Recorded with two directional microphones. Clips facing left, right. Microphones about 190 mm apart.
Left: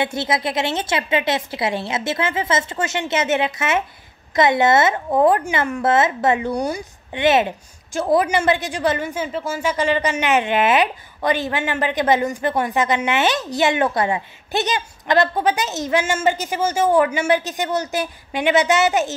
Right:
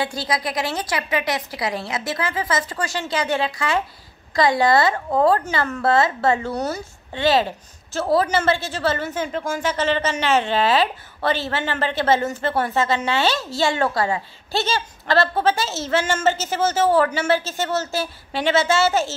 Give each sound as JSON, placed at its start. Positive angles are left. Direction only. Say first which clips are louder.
{"t": 0.0, "sound": "a woman's voice", "louder": "left 3 dB", "side_deg": 25}